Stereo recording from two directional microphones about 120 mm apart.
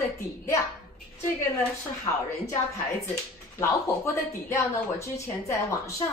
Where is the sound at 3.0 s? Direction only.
25° left (ahead or behind).